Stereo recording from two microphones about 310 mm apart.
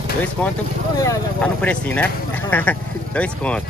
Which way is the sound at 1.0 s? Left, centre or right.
Centre.